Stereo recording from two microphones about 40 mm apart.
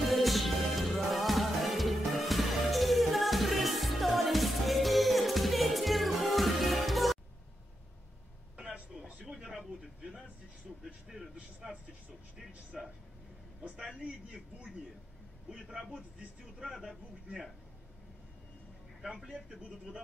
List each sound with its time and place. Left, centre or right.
0.1 s music: centre
8.5 s a sound: right
10.8 s music: centre
12.4 s speech: centre
16.7 s speech: centre